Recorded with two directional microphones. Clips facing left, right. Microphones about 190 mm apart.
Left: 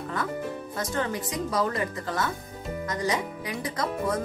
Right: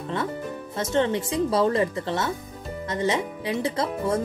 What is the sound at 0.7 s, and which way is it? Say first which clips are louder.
Speech: right 7 dB; 25° right (ahead or behind).